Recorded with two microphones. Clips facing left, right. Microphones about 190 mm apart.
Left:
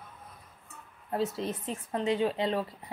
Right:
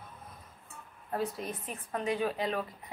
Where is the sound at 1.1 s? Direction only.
25° left (ahead or behind).